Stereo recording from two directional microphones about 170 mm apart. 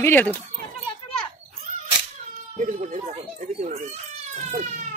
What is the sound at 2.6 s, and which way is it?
Speech, 50° right (ahead or behind).